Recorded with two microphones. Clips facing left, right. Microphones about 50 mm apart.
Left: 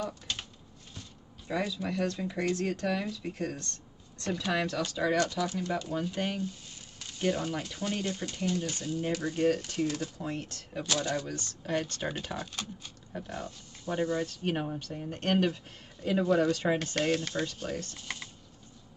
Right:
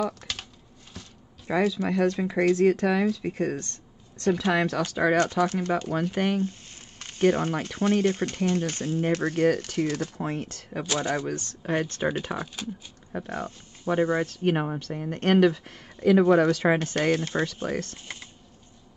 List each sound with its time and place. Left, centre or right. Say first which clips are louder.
0.0 s typing: right 6 dB; right
1.5 s speech: right 8 dB; right
10.9 s speech: right 5 dB; right
13.1 s speech: right 6 dB; right
16.3 s speech: right 6 dB; right
16.7 s speech: right 5 dB; right
17.6 s speech: right 6 dB; right
17.9 s speech: even; right